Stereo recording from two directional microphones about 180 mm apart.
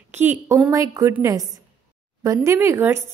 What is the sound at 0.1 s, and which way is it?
A woman's voice, 10° right (ahead or behind).